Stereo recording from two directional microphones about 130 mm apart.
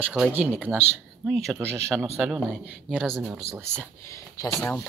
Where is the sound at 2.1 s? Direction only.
5° right (ahead or behind).